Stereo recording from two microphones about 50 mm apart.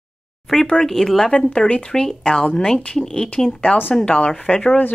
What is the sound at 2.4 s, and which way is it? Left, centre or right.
Speech, centre.